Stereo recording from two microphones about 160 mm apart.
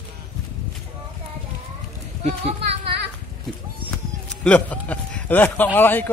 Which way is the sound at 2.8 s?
90° right.